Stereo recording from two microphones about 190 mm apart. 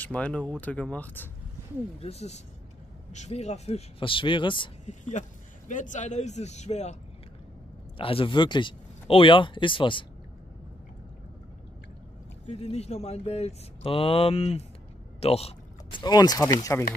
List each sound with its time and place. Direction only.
0.0 s speech: 5° left (ahead or behind)
2.0 s speech: 35° left (ahead or behind)
4.8 s speech: 40° left (ahead or behind)
8.0 s speech: 30° left (ahead or behind)
12.4 s speech: 35° left (ahead or behind)
15.1 s vehicle: 30° left (ahead or behind)
16.0 s speech: 20° left (ahead or behind)